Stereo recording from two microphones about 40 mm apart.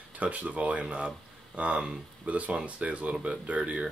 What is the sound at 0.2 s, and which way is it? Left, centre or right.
Speech, right.